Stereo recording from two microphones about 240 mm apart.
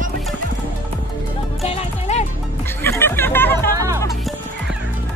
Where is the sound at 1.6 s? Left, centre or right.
Left.